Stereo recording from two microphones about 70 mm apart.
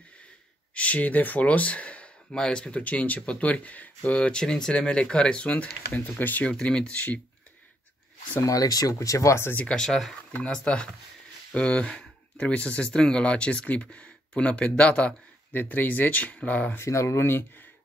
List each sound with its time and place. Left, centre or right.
0.7 s speech: centre
6.5 s speech: centre
8.5 s speech: left
9.6 s speech: centre
16.8 s speech: left